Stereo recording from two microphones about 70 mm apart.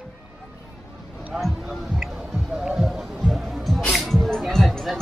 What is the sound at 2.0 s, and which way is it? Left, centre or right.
Music, centre.